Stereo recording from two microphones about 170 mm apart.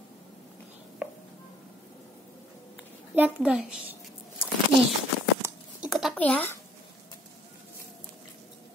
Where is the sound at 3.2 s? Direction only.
10° right (ahead or behind).